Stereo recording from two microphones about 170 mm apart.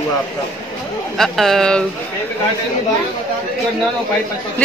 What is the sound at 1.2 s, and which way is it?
Speech, centre (ahead or behind).